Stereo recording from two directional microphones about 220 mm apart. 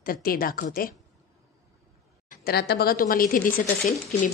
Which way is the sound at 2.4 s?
45° left (ahead or behind).